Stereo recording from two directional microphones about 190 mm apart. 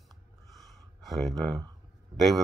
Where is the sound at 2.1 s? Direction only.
20° right (ahead or behind).